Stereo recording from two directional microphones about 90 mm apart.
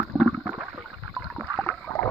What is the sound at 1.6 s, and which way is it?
Rowboat, 20° left (ahead or behind).